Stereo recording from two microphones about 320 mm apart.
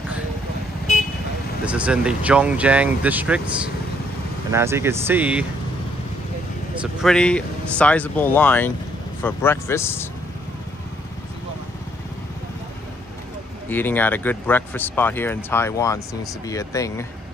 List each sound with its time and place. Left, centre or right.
1.7 s speech: centre
6.8 s speech: centre
13.7 s speech: centre